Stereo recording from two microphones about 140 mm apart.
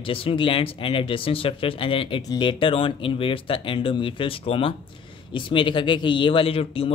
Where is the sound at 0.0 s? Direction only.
40° left (ahead or behind).